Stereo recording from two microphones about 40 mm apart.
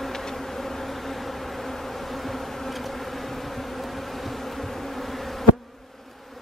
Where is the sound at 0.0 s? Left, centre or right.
Centre.